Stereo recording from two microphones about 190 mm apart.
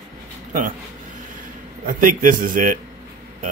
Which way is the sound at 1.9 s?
45° right (ahead or behind).